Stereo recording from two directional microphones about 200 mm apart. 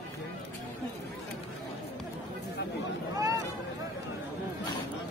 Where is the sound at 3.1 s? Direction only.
15° right (ahead or behind).